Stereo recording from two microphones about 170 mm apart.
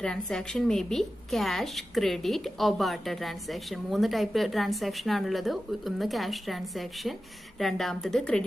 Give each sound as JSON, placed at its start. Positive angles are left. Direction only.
{"t": 0.0, "sound": "a woman's voice", "side_deg": 5}